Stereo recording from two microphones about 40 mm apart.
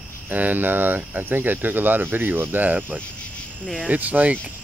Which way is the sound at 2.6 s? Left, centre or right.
Right.